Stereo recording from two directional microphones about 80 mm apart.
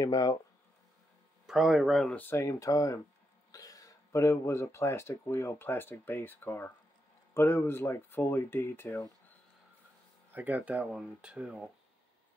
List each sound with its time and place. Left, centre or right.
0.0 s speech: left
1.4 s speech: centre
2.1 s speech: left
2.4 s speech: left
8.8 s speech: left
10.3 s speech: right
10.7 s speech: centre